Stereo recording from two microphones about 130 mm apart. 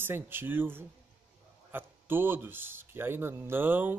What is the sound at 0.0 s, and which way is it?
Speech, 15° right (ahead or behind).